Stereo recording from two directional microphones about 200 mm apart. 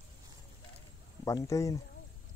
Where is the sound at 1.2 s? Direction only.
15° left (ahead or behind).